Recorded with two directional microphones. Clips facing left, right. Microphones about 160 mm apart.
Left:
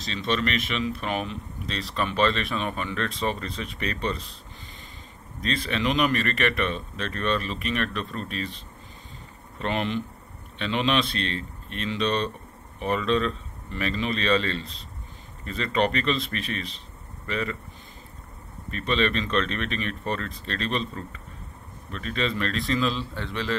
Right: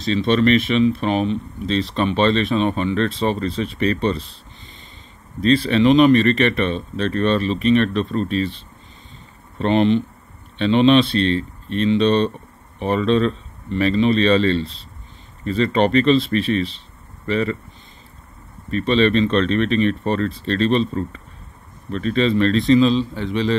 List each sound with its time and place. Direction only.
0.1 s speech: 35° right (ahead or behind)
5.4 s speech: 30° right (ahead or behind)
18.7 s speech: 35° right (ahead or behind); by 23.5 s 15° right (ahead or behind)